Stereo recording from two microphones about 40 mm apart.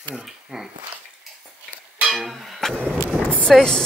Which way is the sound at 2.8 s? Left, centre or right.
Right.